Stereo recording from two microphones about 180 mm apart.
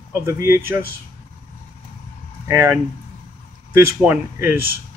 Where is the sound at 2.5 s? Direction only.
15° right (ahead or behind).